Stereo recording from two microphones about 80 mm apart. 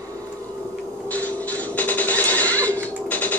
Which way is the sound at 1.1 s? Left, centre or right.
Centre.